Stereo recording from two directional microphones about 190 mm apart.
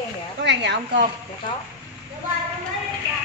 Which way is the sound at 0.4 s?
65° right (ahead or behind).